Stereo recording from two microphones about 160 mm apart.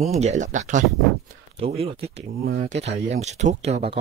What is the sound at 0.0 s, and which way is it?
Speech, 45° right (ahead or behind).